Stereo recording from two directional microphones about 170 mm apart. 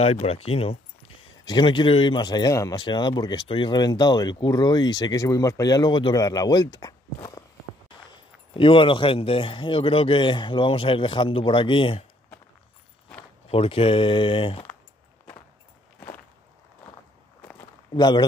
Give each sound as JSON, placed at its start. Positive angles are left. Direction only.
{"t": 0.0, "sound": "a man's voice", "side_deg": 35}
{"t": 8.5, "sound": "a man's voice", "side_deg": 30}
{"t": 13.5, "sound": "a man's voice", "side_deg": 35}
{"t": 17.9, "sound": "speech", "side_deg": 25}